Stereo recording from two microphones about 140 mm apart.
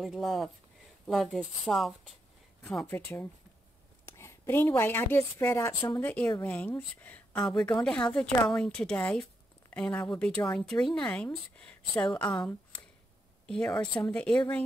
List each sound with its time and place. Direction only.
0.0 s a woman's voice: centre (ahead or behind)
13.5 s speech: 5° left (ahead or behind)